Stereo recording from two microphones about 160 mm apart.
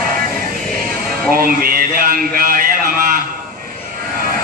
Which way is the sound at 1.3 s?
65° right (ahead or behind).